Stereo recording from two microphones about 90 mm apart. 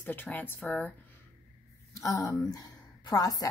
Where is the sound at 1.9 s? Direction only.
40° left (ahead or behind).